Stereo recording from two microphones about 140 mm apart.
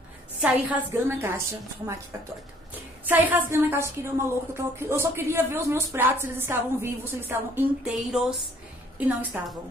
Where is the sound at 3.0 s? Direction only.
10° right (ahead or behind).